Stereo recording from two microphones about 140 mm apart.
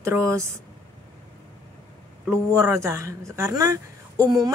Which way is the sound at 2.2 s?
20° right (ahead or behind).